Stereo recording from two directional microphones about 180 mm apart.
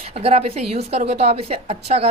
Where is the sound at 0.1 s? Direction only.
35° right (ahead or behind).